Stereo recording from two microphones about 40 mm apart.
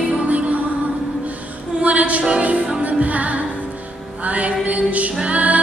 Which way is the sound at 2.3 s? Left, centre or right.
Right.